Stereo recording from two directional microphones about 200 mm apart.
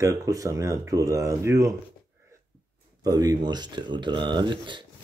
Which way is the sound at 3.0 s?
20° right (ahead or behind).